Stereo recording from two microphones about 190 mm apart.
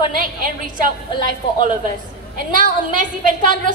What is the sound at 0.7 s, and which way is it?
A woman's voice, 45° right (ahead or behind).